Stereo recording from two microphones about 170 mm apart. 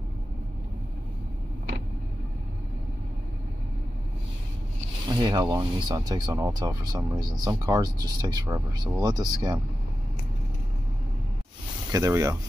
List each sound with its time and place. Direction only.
5.0 s speech: 25° right (ahead or behind)
11.9 s speech: 20° right (ahead or behind)